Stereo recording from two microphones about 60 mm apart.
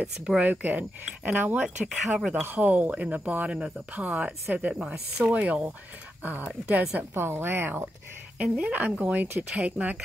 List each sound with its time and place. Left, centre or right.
0.0 s speech: centre
0.4 s speech: right
1.9 s speech: centre
2.5 s speech: right
4.9 s speech: centre
5.3 s speech: right
7.2 s speech: right
8.6 s speech: right